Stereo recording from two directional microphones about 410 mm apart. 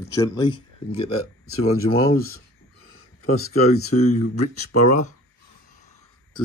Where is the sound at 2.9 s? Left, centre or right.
Left.